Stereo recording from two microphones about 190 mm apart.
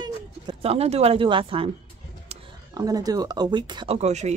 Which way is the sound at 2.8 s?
20° right (ahead or behind).